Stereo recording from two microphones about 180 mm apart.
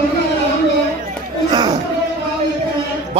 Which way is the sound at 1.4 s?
25° right (ahead or behind).